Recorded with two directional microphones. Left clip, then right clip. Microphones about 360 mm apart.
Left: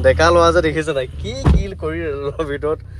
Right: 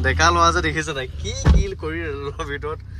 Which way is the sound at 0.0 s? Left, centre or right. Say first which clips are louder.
Left 4 dB; centre.